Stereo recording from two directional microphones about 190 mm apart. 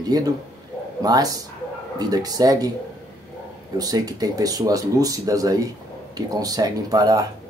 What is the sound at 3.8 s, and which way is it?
Speech, 20° right (ahead or behind).